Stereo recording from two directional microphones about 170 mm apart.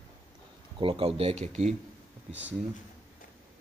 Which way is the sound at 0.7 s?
30° right (ahead or behind).